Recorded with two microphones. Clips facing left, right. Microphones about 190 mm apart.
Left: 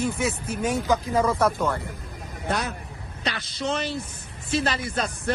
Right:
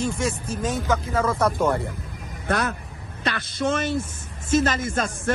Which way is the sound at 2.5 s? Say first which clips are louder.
Right 3 dB; 55° right (ahead or behind).